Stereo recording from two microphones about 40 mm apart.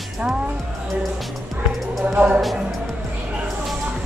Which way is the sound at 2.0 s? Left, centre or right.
Right.